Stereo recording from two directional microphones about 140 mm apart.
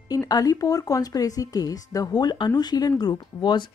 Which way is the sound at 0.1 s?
25° left (ahead or behind).